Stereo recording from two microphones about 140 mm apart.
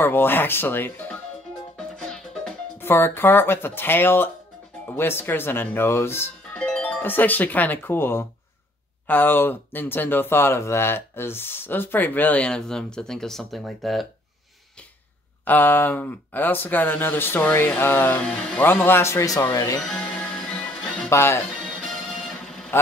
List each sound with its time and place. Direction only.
0.0 s speech: 15° left (ahead or behind)
1.8 s music: 5° left (ahead or behind)
2.8 s speech: 15° left (ahead or behind)
6.6 s speech: 5° left (ahead or behind)
15.4 s speech: 15° left (ahead or behind)
19.9 s music: 10° left (ahead or behind)
21.1 s speech: 20° left (ahead or behind)
21.5 s music: 5° left (ahead or behind)